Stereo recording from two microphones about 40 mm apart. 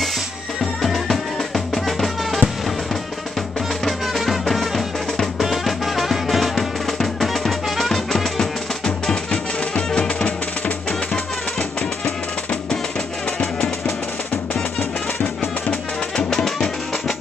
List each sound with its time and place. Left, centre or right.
0.8 s drum: centre
3.8 s music: centre
5.4 s music: centre
8.8 s music: left
14.5 s music: left
16.4 s music: centre